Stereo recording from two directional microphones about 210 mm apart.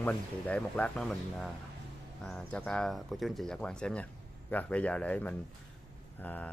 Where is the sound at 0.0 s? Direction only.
5° left (ahead or behind).